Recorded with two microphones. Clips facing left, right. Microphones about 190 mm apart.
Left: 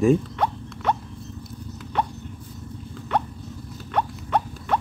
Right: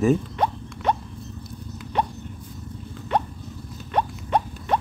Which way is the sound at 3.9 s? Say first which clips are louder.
Right 1 dB; 15° right (ahead or behind).